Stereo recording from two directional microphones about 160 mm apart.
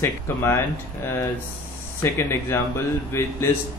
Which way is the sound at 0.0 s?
15° left (ahead or behind).